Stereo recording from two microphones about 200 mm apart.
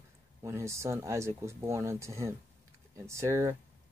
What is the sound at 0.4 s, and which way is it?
Speech, 15° right (ahead or behind).